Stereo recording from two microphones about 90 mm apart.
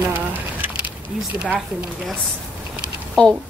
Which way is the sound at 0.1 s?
20° right (ahead or behind).